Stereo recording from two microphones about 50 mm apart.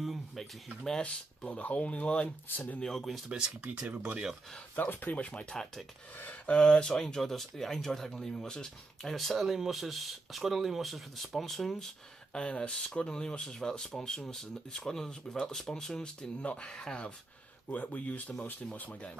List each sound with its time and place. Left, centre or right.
0.0 s a sound: centre
1.0 s speech: left
2.8 s speech: centre
3.3 s speech: centre
4.7 s speech: left
5.1 s speech: left
6.1 s speech: left
6.5 s speech: centre
12.3 s speech: centre
17.6 s speech: left